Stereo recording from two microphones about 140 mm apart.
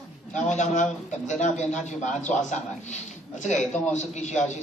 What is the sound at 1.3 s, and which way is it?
A man's voice, 60° left (ahead or behind).